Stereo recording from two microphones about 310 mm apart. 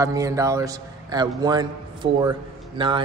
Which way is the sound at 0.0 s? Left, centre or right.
Centre.